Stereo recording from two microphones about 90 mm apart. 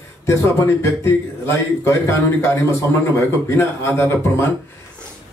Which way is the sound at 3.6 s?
30° left (ahead or behind).